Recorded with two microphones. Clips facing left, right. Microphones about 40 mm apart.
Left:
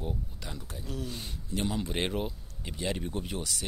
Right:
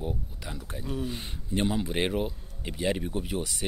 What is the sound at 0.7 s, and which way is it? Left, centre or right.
Speech, right.